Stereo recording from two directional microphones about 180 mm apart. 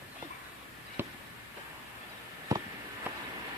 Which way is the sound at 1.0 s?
10° right (ahead or behind).